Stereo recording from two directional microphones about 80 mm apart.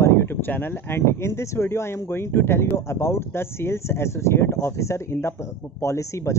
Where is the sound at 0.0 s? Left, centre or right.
Left.